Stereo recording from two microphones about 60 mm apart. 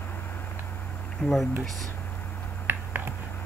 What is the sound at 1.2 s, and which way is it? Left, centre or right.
Speech, centre.